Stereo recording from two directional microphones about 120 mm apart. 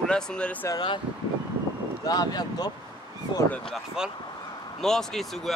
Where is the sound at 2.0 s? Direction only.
35° left (ahead or behind).